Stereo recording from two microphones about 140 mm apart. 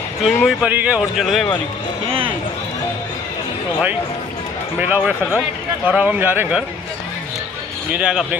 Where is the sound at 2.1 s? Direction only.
40° right (ahead or behind).